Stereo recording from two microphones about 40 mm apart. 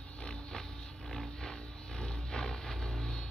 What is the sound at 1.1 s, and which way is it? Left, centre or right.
Roaring cats, centre.